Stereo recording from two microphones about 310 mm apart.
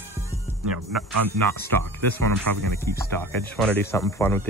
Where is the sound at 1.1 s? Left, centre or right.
Right.